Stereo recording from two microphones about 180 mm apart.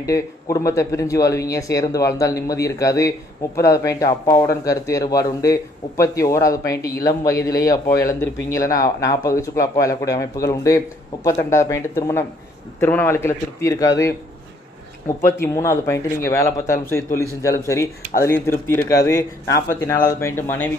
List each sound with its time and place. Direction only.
0.0 s speech: 20° left (ahead or behind)